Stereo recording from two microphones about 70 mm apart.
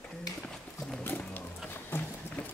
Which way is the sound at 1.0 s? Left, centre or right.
Left.